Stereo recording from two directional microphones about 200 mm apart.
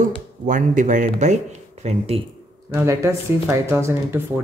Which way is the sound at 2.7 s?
15° right (ahead or behind).